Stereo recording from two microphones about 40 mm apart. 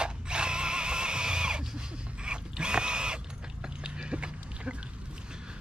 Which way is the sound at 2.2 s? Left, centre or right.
Right.